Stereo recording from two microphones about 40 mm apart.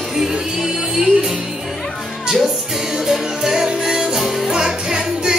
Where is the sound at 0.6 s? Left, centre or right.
Centre.